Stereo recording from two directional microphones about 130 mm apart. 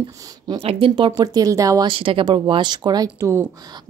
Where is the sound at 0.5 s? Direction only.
45° right (ahead or behind); by 1.9 s 25° right (ahead or behind).